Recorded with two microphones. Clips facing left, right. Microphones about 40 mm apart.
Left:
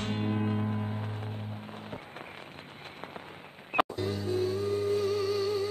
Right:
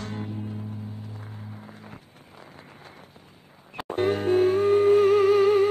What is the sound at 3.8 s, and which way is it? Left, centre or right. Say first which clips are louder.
Music: right 10 dB; right.